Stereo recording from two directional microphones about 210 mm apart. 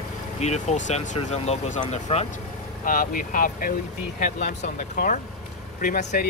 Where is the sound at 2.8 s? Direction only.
40° left (ahead or behind).